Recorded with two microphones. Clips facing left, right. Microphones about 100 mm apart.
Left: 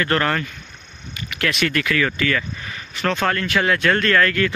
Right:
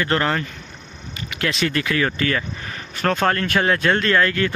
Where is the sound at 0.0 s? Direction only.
20° right (ahead or behind).